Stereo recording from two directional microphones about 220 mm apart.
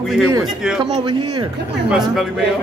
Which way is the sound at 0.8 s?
30° right (ahead or behind).